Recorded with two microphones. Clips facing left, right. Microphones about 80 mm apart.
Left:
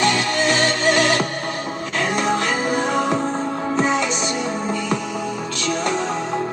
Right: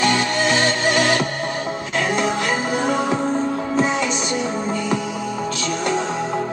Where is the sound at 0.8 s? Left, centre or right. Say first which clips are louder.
Left 2 dB; left.